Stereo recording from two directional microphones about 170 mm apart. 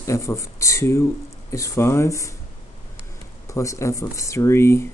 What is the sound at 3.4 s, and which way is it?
Speech, 20° left (ahead or behind).